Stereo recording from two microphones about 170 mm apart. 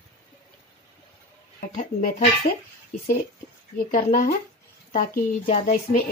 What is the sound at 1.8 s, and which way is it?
Speech, 45° left (ahead or behind).